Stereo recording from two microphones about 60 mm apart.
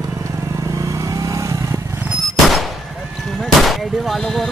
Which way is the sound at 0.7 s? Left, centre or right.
Right.